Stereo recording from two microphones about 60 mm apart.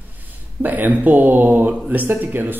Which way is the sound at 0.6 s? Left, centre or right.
Right.